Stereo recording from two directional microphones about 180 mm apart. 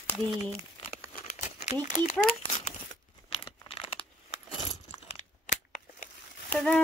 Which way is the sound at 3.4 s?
30° left (ahead or behind).